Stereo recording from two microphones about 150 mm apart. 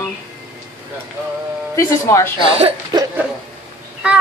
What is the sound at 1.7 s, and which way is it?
Speech, 20° left (ahead or behind).